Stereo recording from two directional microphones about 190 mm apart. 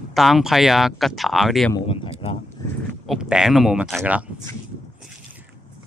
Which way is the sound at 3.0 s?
5° right (ahead or behind).